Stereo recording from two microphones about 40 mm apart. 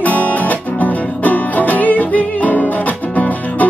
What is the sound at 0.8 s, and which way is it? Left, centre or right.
Music, left.